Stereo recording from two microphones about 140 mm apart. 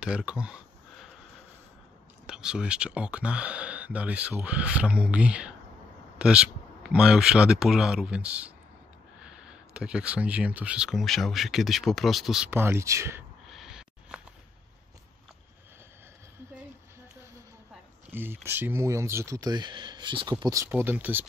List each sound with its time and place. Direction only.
0.0 s a sound: 5° right (ahead or behind)
2.2 s speech: 5° right (ahead or behind)
12.4 s speech: 15° right (ahead or behind)
13.5 s owl: 5° right (ahead or behind)
18.1 s speech: 15° right (ahead or behind)